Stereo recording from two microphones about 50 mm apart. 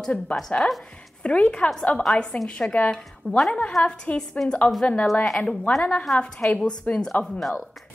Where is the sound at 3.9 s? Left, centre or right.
Centre.